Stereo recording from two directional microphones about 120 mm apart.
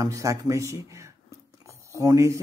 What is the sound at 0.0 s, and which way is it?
Speech, 25° right (ahead or behind).